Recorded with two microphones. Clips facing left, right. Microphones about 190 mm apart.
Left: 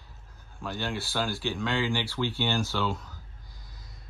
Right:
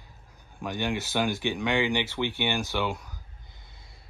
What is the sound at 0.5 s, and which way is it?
Speech, 15° right (ahead or behind).